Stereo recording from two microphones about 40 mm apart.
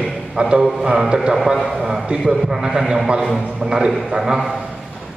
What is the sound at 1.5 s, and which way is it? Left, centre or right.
Speech, centre.